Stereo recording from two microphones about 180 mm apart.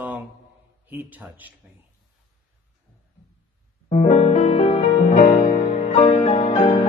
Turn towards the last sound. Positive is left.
turn(degrees=30)  # may be behind; listen again after turning